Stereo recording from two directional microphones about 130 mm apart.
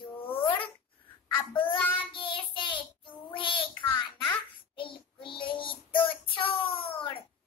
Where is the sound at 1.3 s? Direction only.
40° left (ahead or behind).